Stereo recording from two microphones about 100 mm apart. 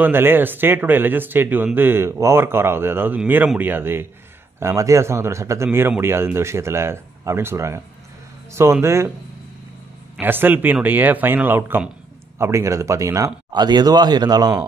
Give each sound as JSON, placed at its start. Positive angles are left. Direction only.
{"t": 0.0, "sound": "speech", "side_deg": -20}
{"t": 8.8, "sound": "speech", "side_deg": -25}
{"t": 10.2, "sound": "speech", "side_deg": -20}
{"t": 13.5, "sound": "speech", "side_deg": -45}